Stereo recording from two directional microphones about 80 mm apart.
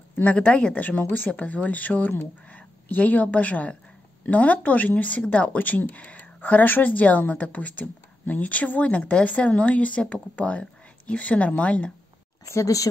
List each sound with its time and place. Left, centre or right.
0.1 s speech: centre
12.4 s speech: left